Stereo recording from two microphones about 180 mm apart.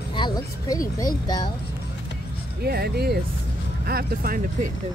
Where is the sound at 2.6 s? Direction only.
60° right (ahead or behind).